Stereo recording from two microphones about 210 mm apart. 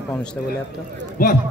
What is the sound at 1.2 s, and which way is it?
Speech, 45° left (ahead or behind).